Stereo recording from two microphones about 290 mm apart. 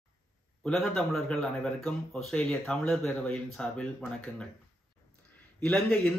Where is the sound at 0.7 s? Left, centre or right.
Centre.